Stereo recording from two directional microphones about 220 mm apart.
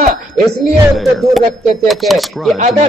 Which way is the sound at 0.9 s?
Centre (ahead or behind).